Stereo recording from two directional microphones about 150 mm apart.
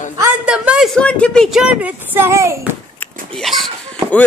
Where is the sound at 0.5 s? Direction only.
5° right (ahead or behind).